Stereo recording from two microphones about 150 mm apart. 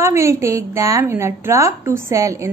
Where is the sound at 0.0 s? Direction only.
20° right (ahead or behind).